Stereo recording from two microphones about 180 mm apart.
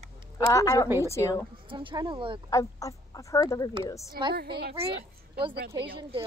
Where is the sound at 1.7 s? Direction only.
30° right (ahead or behind).